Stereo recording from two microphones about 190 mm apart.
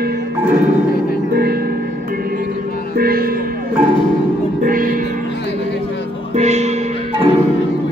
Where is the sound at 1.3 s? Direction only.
55° right (ahead or behind).